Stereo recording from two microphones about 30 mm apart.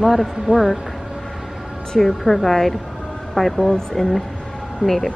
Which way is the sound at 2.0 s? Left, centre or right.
Centre.